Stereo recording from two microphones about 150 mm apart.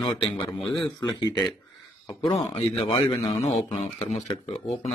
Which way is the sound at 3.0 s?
35° left (ahead or behind).